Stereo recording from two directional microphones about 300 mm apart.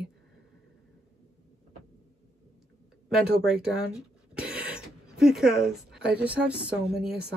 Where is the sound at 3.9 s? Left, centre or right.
Centre.